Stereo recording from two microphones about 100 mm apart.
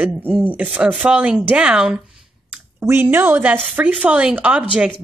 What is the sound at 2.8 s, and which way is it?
A woman's voice, 20° right (ahead or behind).